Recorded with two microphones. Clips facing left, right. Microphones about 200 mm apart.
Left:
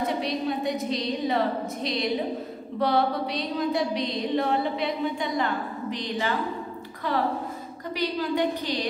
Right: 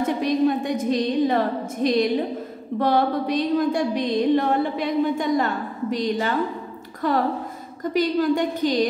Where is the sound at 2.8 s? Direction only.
50° right (ahead or behind).